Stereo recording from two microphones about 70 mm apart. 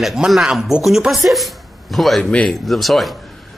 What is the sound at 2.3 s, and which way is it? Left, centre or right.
Speech, centre.